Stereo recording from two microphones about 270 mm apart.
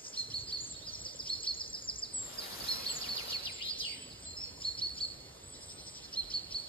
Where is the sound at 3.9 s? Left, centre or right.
Centre.